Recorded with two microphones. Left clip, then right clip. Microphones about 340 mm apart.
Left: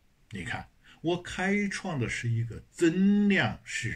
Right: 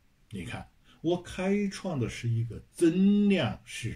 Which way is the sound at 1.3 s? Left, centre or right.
Right.